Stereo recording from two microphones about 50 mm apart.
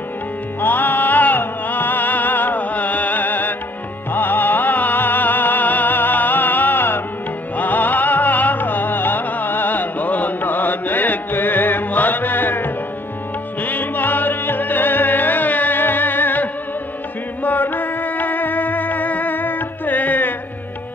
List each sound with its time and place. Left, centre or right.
0.6 s music: left